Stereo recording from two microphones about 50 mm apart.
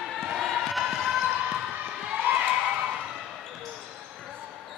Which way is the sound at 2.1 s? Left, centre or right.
Right.